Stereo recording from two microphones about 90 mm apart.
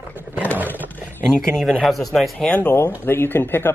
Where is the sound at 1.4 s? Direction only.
5° left (ahead or behind).